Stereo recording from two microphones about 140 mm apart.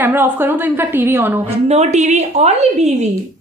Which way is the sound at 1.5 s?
50° right (ahead or behind).